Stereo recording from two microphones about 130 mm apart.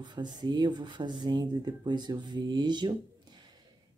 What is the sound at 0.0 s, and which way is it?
Speech, 35° right (ahead or behind).